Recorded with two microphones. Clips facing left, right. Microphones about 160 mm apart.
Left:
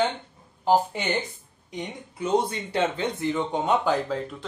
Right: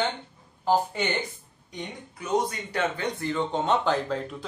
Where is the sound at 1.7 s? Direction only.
30° left (ahead or behind).